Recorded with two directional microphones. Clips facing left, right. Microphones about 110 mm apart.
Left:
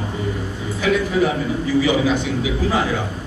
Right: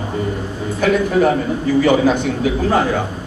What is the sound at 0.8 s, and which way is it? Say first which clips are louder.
A man's voice: right 4 dB; 50° right (ahead or behind).